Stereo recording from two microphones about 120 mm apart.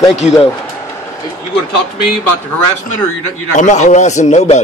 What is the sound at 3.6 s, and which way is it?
Speech, 85° left.